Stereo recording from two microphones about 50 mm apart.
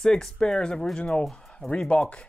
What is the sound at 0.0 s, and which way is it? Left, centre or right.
Speech, centre.